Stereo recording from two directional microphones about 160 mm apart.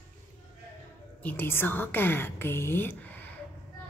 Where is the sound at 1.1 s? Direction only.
10° left (ahead or behind).